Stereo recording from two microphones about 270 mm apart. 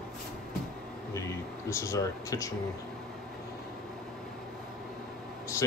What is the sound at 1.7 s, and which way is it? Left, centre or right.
Speech, centre.